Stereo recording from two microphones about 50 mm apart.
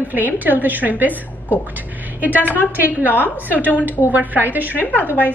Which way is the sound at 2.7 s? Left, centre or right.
Right.